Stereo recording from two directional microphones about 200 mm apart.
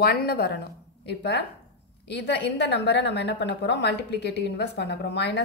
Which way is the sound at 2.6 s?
60° left (ahead or behind).